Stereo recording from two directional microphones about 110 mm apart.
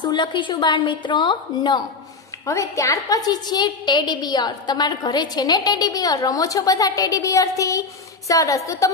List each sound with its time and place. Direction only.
0.0 s a woman's voice: 45° left (ahead or behind)
2.4 s a woman's voice: 30° left (ahead or behind)